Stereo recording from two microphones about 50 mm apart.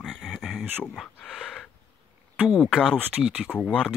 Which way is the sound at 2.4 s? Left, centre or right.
Right.